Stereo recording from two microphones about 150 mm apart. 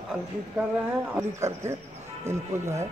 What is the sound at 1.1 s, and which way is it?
A man's voice, 15° right (ahead or behind).